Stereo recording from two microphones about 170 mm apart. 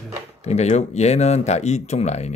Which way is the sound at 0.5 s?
40° left (ahead or behind).